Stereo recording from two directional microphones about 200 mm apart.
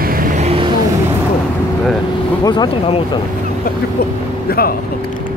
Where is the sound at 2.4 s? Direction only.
20° left (ahead or behind).